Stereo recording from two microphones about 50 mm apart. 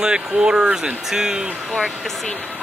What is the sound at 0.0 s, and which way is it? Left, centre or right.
Speech, centre.